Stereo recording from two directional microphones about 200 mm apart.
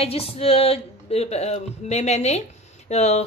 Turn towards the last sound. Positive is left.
turn(degrees=35)  # may be behind; listen again after turning